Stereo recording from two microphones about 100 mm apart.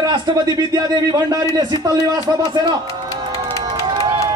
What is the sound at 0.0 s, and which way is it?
A man's voice, 45° right (ahead or behind).